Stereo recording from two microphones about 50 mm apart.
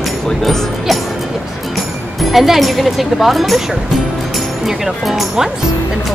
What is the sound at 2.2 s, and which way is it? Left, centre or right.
Speech, centre.